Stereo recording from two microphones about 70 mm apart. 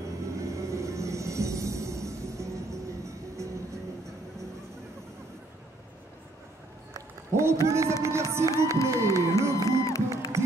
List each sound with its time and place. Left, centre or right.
0.2 s music: right
6.9 s a sound: right
8.8 s music: right
9.7 s music: left